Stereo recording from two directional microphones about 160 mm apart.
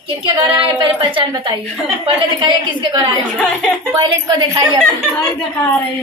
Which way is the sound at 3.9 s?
25° right (ahead or behind).